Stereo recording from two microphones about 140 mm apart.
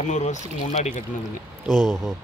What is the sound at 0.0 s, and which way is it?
Speech, 60° left (ahead or behind).